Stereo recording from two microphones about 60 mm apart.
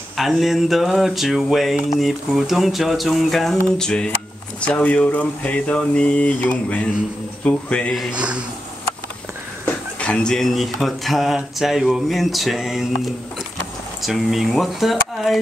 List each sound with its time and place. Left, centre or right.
0.2 s speech: centre
8.1 s speech: centre
9.9 s speech: centre
14.0 s speech: centre